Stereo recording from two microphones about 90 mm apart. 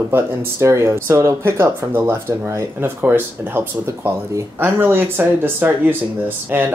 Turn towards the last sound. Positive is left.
turn(degrees=-25)  # may be behind; listen again after turning